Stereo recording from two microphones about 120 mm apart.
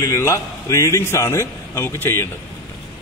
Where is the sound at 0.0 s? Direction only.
25° left (ahead or behind).